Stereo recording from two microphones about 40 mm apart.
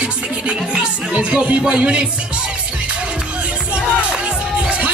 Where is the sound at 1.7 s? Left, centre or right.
Right.